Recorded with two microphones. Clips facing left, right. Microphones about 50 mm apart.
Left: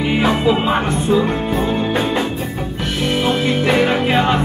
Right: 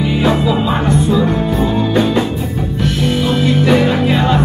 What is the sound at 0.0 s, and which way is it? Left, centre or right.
Music, left.